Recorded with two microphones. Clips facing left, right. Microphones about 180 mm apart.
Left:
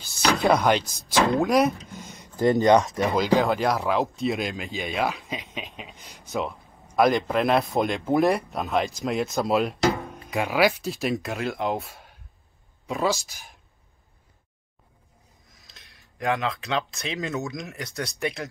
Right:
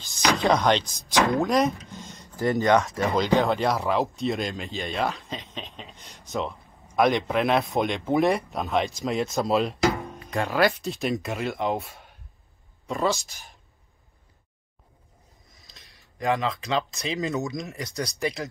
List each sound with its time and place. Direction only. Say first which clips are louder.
0.4 s speech: left 1 dB; 5° left (ahead or behind)
1.9 s a sound: left 1 dB; 10° left (ahead or behind)
2.2 s speech: left 4 dB; 20° left (ahead or behind)
3.1 s speech: even; centre (ahead or behind)
15.5 s speech: even; centre (ahead or behind)